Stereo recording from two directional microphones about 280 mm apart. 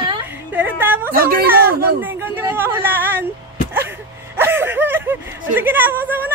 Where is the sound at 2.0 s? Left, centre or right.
Centre.